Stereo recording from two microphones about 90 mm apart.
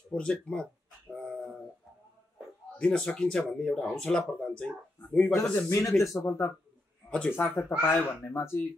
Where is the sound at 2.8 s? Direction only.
10° left (ahead or behind).